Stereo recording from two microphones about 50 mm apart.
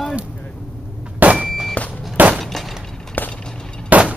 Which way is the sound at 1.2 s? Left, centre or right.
Right.